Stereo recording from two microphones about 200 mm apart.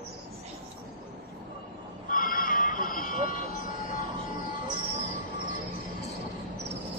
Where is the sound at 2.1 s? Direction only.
45° left (ahead or behind).